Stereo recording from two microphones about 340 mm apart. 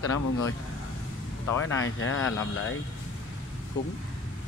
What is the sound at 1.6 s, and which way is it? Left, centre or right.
Speech, left.